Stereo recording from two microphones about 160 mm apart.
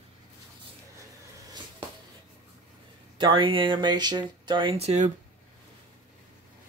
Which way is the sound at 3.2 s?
30° right (ahead or behind).